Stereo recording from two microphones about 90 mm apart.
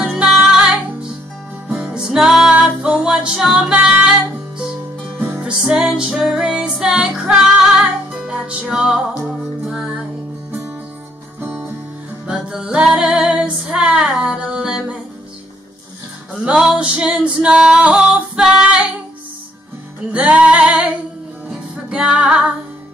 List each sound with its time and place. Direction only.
0.0 s music: 5° right (ahead or behind)
1.7 s music: 5° right (ahead or behind)
11.4 s music: 20° right (ahead or behind)
12.3 s music: 5° right (ahead or behind)
16.4 s music: 10° right (ahead or behind)
20.1 s music: 10° right (ahead or behind)